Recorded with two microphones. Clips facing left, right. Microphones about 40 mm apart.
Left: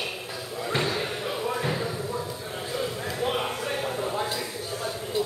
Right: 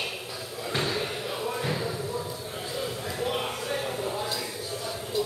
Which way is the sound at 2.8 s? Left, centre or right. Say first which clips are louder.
Left 2 dB; centre.